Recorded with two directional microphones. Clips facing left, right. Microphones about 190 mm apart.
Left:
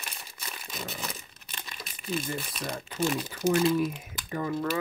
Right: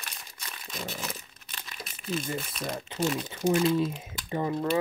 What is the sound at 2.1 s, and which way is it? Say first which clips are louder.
Speech: even; centre (ahead or behind).